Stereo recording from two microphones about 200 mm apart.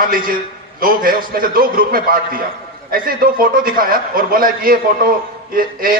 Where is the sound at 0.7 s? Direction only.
45° right (ahead or behind).